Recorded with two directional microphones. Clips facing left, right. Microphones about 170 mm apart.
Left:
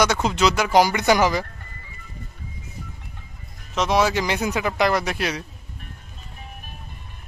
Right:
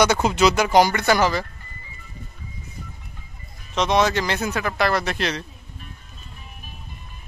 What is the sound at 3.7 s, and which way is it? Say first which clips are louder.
Speech: right 1 dB; 5° left (ahead or behind).